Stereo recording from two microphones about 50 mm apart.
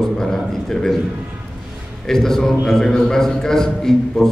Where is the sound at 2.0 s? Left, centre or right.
Centre.